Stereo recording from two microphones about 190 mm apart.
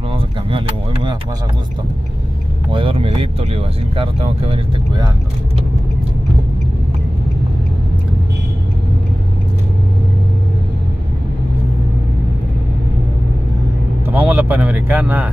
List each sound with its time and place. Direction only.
0.1 s a sound: 25° right (ahead or behind)
2.7 s speech: 25° right (ahead or behind)
14.0 s speech: 10° right (ahead or behind)